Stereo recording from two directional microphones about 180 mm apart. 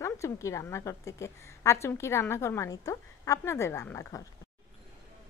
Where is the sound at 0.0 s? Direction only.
15° left (ahead or behind).